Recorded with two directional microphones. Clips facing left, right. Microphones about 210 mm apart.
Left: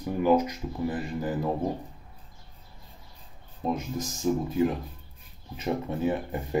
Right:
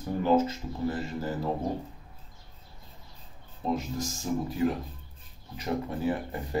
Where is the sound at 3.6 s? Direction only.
20° left (ahead or behind).